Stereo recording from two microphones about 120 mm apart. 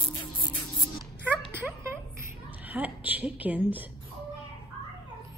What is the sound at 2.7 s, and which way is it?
Speech, 15° right (ahead or behind).